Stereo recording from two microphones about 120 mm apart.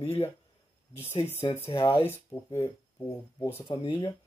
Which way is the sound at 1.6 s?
35° left (ahead or behind).